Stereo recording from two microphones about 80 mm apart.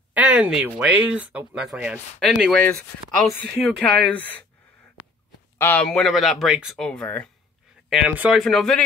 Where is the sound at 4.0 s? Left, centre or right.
Centre.